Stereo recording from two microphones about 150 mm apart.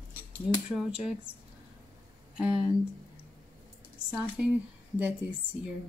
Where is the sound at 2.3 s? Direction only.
5° right (ahead or behind).